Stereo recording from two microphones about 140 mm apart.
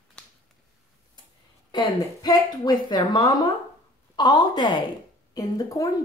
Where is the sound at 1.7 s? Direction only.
30° left (ahead or behind).